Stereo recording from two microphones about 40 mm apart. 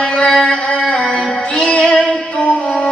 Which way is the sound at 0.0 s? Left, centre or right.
Left.